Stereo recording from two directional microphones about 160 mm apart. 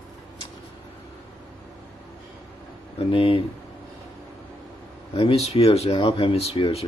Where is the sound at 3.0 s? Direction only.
35° left (ahead or behind).